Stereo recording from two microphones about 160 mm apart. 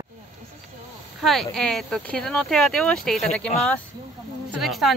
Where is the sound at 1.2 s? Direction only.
Centre (ahead or behind).